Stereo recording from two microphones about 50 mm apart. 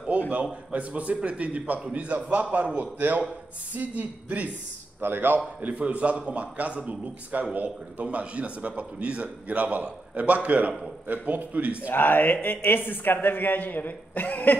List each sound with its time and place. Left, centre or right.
0.7 s a man's voice: right
5.0 s a man's voice: right
5.6 s a man's voice: right
11.9 s speech: left